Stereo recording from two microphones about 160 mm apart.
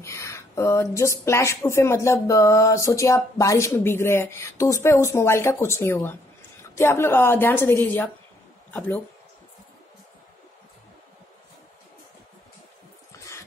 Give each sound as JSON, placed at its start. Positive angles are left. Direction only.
{"t": 0.0, "sound": "speech", "side_deg": 15}